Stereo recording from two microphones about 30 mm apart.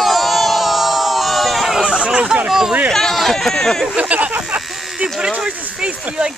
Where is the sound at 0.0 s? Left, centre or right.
Centre.